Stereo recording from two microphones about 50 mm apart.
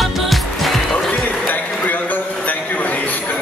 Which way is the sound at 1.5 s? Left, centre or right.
Left.